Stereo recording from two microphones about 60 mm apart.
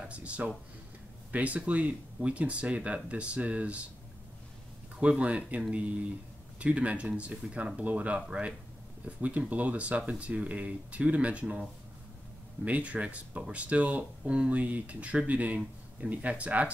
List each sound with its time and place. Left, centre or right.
0.1 s speech: right
5.0 s speech: right
12.6 s speech: right